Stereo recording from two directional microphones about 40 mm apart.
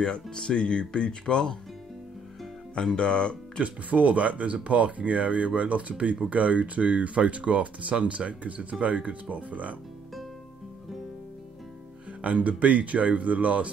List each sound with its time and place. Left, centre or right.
0.0 s speech: centre
2.8 s speech: centre
3.6 s speech: right
12.2 s speech: right